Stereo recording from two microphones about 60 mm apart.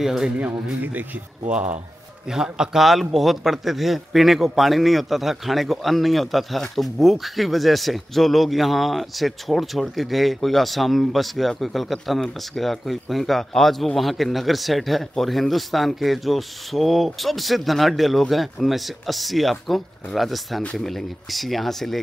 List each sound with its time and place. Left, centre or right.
0.0 s speech: centre
1.5 s speech: right; by 22.0 s centre